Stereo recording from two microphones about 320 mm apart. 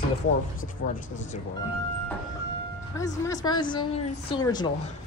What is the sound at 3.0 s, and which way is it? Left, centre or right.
Speech, centre.